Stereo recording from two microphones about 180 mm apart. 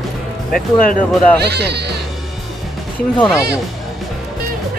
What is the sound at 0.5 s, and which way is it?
Speech, 50° left (ahead or behind).